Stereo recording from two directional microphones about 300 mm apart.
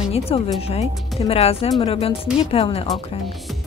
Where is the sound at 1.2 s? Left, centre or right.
Centre.